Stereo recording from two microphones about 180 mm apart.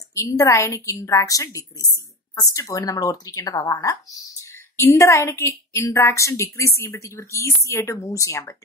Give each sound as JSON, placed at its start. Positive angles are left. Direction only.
{"t": 0.1, "sound": "speech", "side_deg": 15}